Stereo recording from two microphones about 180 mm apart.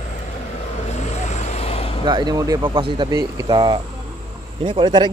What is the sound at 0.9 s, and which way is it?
Vehicle, 40° left (ahead or behind).